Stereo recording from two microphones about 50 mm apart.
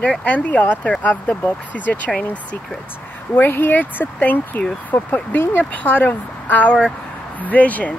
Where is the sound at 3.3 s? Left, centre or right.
Left.